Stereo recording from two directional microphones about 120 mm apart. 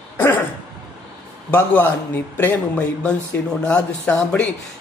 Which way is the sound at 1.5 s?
15° left (ahead or behind).